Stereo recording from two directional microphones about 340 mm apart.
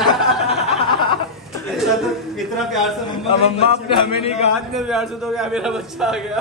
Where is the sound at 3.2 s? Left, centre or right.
Centre.